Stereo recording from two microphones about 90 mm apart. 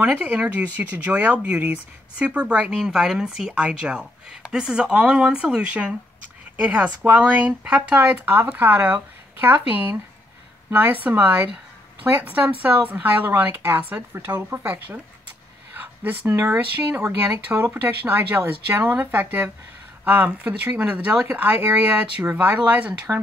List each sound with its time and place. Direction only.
0.1 s a woman's voice: 20° right (ahead or behind)